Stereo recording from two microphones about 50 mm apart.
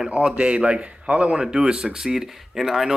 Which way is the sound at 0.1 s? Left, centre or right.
Right.